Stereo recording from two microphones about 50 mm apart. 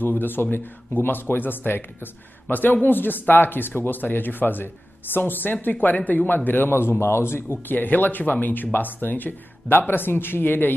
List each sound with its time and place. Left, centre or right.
0.0 s a man's voice: left